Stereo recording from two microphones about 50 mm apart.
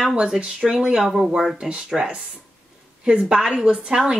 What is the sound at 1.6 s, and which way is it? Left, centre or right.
A woman's voice, centre.